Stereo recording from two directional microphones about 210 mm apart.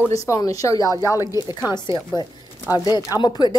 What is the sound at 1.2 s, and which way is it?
Speech, 15° right (ahead or behind).